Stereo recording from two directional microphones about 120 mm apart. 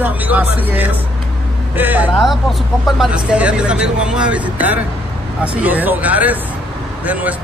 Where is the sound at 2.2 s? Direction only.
Centre (ahead or behind).